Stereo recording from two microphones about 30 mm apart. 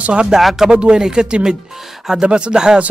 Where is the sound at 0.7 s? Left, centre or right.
Right.